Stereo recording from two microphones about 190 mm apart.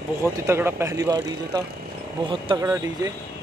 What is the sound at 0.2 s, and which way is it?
Speech, 15° right (ahead or behind).